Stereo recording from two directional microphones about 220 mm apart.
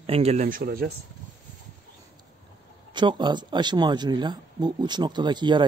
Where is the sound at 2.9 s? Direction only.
20° right (ahead or behind).